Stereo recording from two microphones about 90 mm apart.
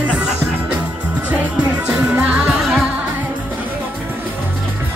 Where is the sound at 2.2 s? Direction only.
10° right (ahead or behind).